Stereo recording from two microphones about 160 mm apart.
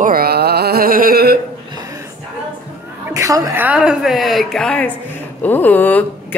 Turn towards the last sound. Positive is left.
turn(degrees=10)  # may be behind; listen again after turning